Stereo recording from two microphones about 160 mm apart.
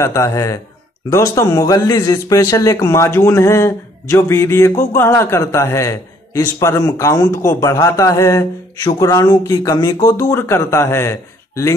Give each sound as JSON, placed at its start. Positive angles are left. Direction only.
{"t": 0.0, "sound": "speech", "side_deg": 20}